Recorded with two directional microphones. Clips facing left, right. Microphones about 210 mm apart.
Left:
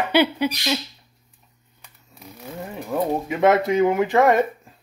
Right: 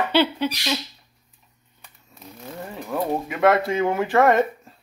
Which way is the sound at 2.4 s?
10° left (ahead or behind).